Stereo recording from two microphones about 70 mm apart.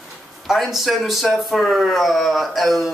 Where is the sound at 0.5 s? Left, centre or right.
Centre.